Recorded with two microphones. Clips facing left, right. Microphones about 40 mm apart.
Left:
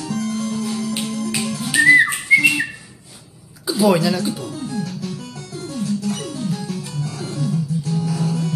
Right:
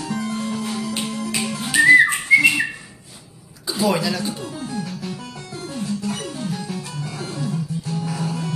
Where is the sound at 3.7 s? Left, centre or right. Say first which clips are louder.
Left 4 dB; centre.